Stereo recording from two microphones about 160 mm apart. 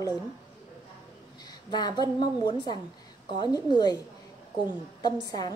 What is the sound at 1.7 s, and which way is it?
A woman's voice, 25° left (ahead or behind).